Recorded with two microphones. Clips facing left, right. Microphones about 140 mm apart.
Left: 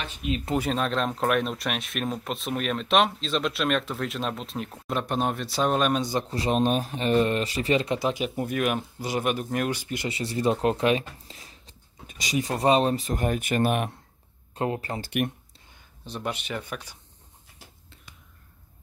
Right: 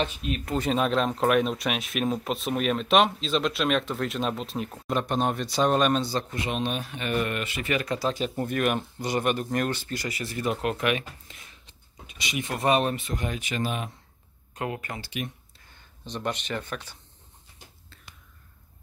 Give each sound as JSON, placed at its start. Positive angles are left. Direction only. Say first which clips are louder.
{"t": 0.2, "sound": "speech", "louder": "left 2 dB", "side_deg": 15}
{"t": 0.6, "sound": "speech", "louder": "right 4 dB", "side_deg": -5}
{"t": 6.2, "sound": "speech", "louder": "left 6 dB", "side_deg": 35}
{"t": 10.0, "sound": "speech", "louder": "left 5 dB", "side_deg": 30}
{"t": 14.5, "sound": "speech", "louder": "left 4 dB", "side_deg": 30}
{"t": 15.0, "sound": "speech", "louder": "left 7 dB", "side_deg": 55}
{"t": 16.1, "sound": "speech", "louder": "right 1 dB", "side_deg": 5}